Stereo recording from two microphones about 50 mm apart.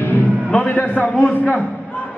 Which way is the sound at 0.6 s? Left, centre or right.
Left.